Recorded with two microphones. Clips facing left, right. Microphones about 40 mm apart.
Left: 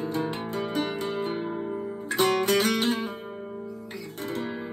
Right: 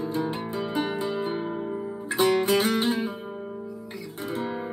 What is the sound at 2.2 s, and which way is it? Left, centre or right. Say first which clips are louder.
Music: right 1 dB; left.